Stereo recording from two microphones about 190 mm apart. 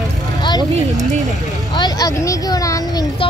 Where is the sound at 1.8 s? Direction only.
20° left (ahead or behind).